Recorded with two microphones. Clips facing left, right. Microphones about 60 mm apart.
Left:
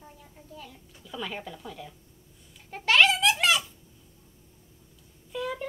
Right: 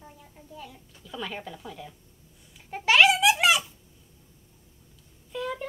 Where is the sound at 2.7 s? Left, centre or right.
Centre.